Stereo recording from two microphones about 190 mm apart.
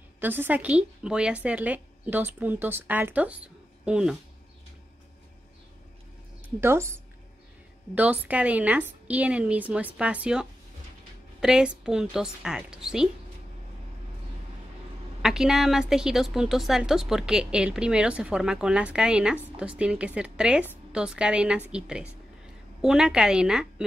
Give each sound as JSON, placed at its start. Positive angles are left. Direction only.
{"t": 0.2, "sound": "a woman's voice", "side_deg": -10}
{"t": 6.6, "sound": "a woman's voice", "side_deg": -15}
{"t": 15.2, "sound": "a woman's voice", "side_deg": -5}